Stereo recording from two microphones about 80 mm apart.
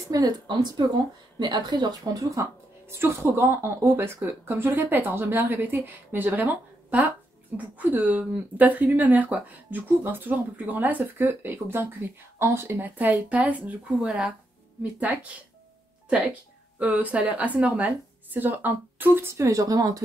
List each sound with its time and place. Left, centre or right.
0.1 s speech: right
2.9 s speech: right
16.7 s speech: centre; by 20.0 s right